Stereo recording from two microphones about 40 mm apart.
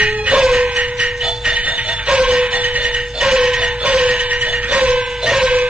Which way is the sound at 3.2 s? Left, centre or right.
Centre.